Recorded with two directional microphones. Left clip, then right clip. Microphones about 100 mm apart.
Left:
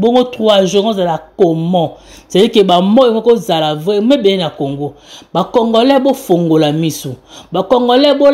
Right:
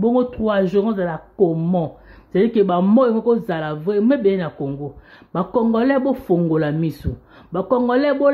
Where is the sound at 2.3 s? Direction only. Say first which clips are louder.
Left 8 dB; 45° left (ahead or behind).